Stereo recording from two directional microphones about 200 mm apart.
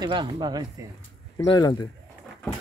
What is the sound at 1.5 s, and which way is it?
Speech, 20° left (ahead or behind).